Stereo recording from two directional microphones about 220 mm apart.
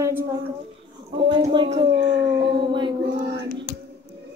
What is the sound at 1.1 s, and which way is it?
Speech, 25° right (ahead or behind).